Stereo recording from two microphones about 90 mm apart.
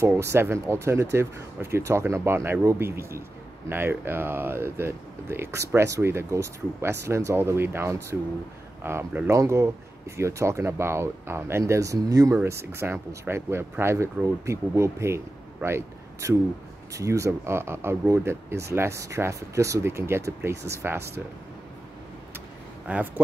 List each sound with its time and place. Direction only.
0.0 s speech: 30° right (ahead or behind)
22.8 s speech: 15° right (ahead or behind)